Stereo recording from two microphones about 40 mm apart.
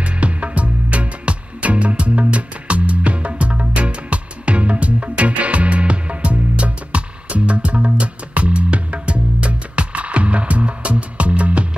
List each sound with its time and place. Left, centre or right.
0.0 s music: right